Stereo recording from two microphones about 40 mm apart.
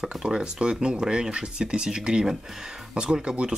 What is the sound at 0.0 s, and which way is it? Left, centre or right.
Speech, centre.